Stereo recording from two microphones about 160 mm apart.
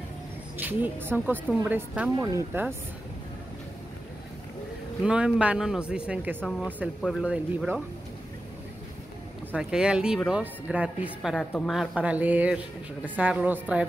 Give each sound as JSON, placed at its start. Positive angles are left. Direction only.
{"t": 0.6, "sound": "speech", "side_deg": -10}
{"t": 2.1, "sound": "speech", "side_deg": -20}
{"t": 5.0, "sound": "speech", "side_deg": -5}
{"t": 9.6, "sound": "speech", "side_deg": -5}